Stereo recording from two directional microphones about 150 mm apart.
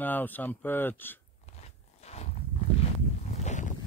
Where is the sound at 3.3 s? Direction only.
50° left (ahead or behind).